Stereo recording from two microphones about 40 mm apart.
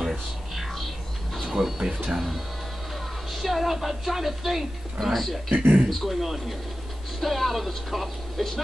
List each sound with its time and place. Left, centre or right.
0.0 s music: centre
1.5 s speech: centre
2.0 s speech: centre
3.4 s speech: centre
5.5 s speech: right
5.9 s speech: centre
7.2 s speech: centre